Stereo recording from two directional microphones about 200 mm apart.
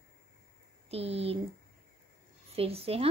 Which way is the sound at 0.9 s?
30° right (ahead or behind).